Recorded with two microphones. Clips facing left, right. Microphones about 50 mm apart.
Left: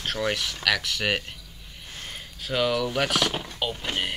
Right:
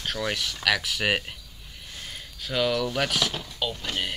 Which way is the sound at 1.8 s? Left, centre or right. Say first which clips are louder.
Left 1 dB; centre.